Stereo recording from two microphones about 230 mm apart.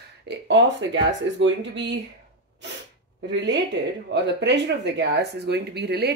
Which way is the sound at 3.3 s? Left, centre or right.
Right.